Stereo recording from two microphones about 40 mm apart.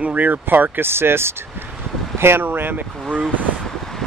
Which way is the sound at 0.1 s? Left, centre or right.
Right.